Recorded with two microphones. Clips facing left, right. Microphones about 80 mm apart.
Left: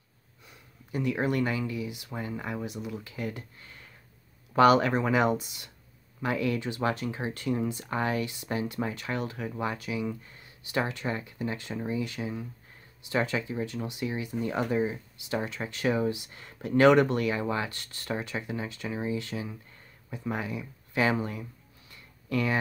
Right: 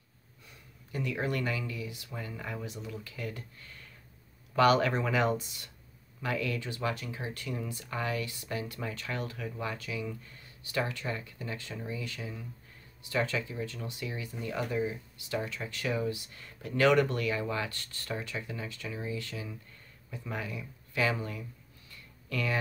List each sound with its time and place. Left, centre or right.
0.9 s speech: left
6.8 s speech: left
21.9 s a sound: left